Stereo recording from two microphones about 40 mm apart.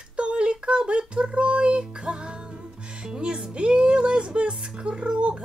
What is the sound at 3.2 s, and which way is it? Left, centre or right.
Music, right.